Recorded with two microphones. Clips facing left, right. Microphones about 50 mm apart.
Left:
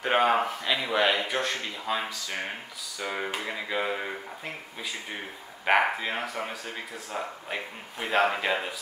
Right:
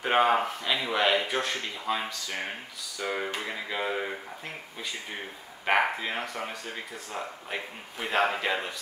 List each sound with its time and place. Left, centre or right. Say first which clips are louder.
0.0 s speech: even; centre
5.7 s speech: left 2 dB; centre